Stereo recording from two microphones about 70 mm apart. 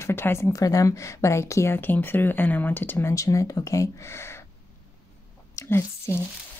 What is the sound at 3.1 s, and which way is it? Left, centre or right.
Speech, left.